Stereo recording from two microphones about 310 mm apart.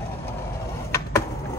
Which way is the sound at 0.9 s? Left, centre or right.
Centre.